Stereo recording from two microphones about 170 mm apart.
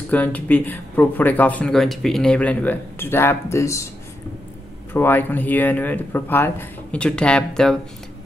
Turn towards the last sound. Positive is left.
turn(degrees=5)  # may be behind; listen again after turning